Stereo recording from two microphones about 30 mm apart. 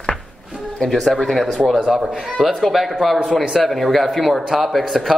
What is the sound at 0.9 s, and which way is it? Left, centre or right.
Speech, centre.